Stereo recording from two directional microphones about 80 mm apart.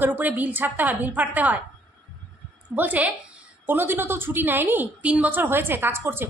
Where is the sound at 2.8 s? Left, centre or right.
Centre.